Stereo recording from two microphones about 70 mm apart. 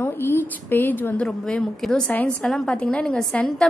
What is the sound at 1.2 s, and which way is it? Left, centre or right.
A woman's voice, centre.